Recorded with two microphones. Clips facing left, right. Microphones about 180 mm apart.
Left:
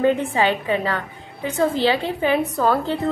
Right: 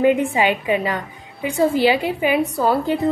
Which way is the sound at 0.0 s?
15° right (ahead or behind).